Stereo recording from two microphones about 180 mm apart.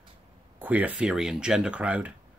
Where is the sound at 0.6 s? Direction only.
10° right (ahead or behind).